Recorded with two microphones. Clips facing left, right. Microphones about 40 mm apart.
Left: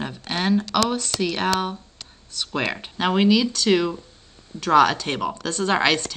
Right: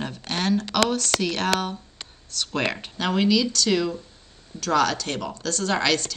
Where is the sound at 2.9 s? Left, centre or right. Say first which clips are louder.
Left 3 dB; centre.